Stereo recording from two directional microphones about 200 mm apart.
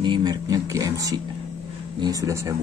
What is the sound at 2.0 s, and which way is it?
Speech, 15° right (ahead or behind).